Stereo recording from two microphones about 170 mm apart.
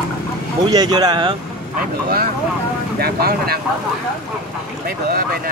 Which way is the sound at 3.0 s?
65° right (ahead or behind).